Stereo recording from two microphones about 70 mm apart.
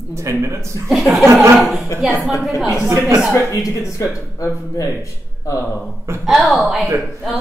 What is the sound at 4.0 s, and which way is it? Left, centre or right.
Speech, left.